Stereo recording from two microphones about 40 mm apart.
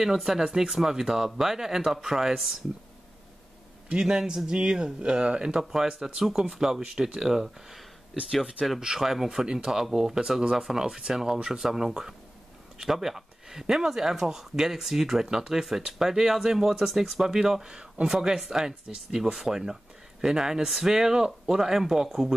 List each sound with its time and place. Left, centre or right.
0.0 s speech: centre
3.9 s speech: centre
5.5 s speech: centre